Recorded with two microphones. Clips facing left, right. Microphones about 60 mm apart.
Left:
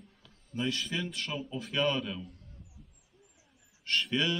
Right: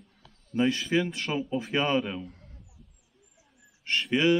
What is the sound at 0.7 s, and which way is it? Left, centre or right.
Mantra, right.